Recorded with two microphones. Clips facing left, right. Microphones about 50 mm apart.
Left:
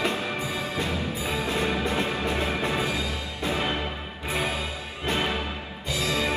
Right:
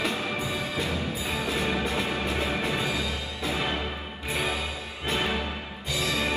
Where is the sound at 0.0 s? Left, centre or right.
Left.